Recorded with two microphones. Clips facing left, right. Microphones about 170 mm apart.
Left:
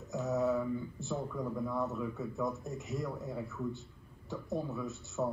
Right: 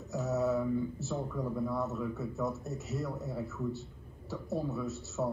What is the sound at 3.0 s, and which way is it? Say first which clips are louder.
Speech: right 1 dB; 15° left (ahead or behind).